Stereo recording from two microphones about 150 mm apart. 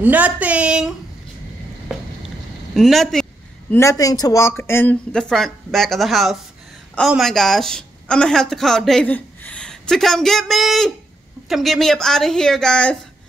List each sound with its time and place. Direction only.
0.0 s speech: 10° right (ahead or behind)
2.7 s speech: centre (ahead or behind)
3.7 s speech: 20° left (ahead or behind)
5.1 s a woman's voice: 5° left (ahead or behind)